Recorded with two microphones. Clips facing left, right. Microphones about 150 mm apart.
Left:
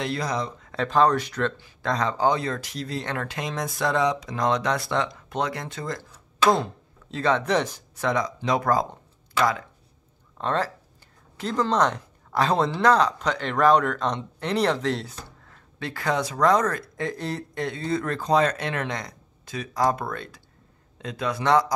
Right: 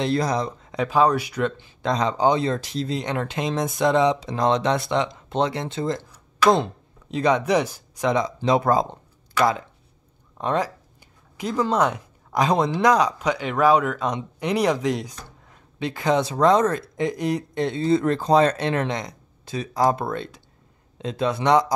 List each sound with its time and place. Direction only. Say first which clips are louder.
0.0 s speech: right 5 dB; 35° right (ahead or behind)
0.7 s speech: right 1 dB; 10° right (ahead or behind)
10.3 s speech: right 2 dB; 15° right (ahead or behind)